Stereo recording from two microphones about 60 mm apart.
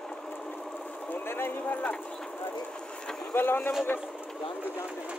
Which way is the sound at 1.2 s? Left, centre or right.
Left.